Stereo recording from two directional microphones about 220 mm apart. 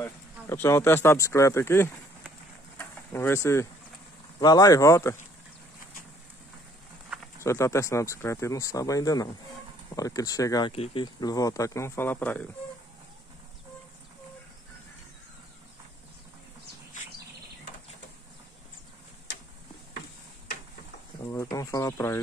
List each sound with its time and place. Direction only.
0.0 s speech: 10° left (ahead or behind)
2.8 s vehicle: 10° left (ahead or behind)
4.4 s speech: 15° left (ahead or behind)
7.3 s speech: 10° left (ahead or behind)
21.3 s a sound: 15° left (ahead or behind)